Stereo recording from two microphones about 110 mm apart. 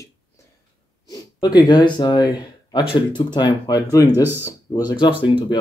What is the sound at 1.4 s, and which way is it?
Speech, 40° left (ahead or behind).